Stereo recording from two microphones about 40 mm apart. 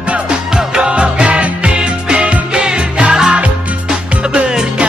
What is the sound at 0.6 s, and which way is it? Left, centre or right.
Music, right.